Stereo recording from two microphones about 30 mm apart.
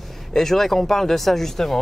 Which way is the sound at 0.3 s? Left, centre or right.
Centre.